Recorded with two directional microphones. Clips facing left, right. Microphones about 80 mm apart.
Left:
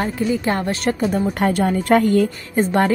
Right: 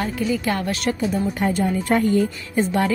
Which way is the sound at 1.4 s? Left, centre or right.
Left.